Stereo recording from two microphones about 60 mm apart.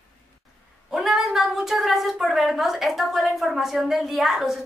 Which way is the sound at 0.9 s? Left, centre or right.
Centre.